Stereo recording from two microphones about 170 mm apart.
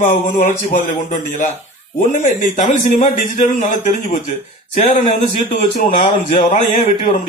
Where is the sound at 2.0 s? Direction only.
45° left (ahead or behind).